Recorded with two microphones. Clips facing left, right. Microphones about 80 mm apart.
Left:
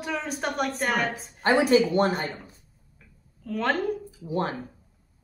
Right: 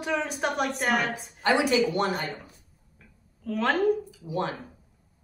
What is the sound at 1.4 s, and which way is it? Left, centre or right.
Speech, left.